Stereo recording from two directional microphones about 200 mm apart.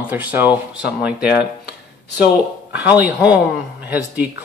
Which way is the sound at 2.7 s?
10° right (ahead or behind).